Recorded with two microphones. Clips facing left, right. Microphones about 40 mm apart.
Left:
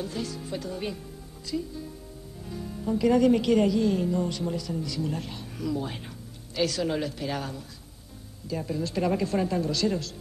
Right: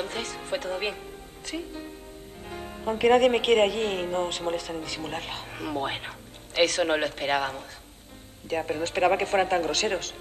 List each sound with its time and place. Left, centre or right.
0.0 s a woman's voice: right